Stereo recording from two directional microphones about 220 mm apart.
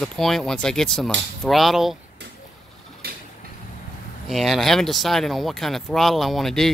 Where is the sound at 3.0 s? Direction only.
45° right (ahead or behind).